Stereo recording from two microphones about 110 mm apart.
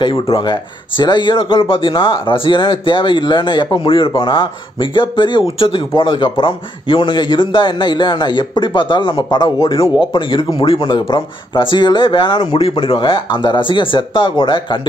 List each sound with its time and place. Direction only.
0.0 s speech: 50° left (ahead or behind)
11.1 s speech: 40° left (ahead or behind)